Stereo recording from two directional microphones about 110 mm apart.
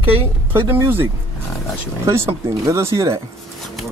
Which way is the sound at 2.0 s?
25° right (ahead or behind).